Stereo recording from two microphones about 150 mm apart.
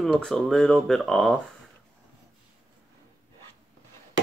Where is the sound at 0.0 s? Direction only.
5° left (ahead or behind).